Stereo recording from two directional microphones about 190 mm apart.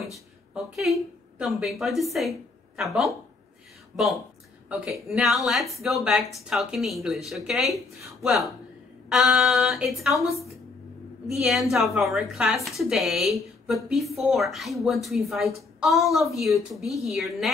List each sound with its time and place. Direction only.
0.7 s a woman's voice: centre (ahead or behind)